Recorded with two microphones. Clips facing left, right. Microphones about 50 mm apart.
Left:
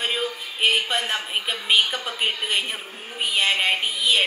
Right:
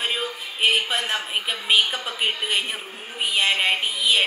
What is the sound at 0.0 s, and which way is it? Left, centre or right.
Speech, centre.